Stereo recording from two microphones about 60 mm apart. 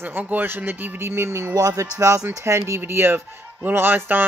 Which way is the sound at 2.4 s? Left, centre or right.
Right.